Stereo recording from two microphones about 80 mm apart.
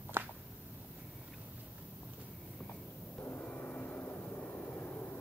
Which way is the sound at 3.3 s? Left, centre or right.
Centre.